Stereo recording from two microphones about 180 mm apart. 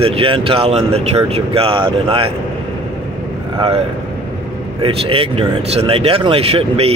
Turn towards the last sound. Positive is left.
turn(degrees=-35)  # may be behind; listen again after turning